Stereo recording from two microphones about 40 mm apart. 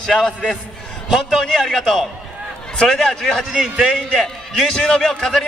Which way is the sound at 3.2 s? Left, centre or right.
Centre.